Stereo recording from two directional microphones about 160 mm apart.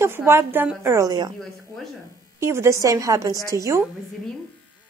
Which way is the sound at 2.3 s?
15° right (ahead or behind).